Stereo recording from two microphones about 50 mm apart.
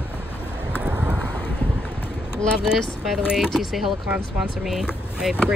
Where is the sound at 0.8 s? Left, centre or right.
Right.